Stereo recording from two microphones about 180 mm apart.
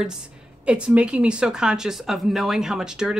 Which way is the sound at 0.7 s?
5° right (ahead or behind).